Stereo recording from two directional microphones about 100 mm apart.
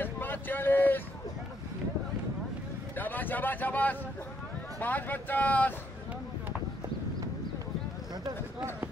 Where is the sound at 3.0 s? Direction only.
20° left (ahead or behind).